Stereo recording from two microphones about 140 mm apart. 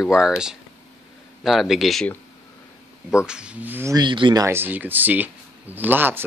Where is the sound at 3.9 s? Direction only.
35° right (ahead or behind).